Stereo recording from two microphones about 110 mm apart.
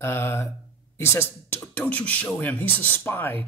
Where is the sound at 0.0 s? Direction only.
20° left (ahead or behind).